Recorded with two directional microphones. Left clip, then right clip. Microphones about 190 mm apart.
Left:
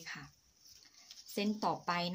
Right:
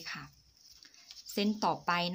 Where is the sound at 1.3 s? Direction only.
30° right (ahead or behind).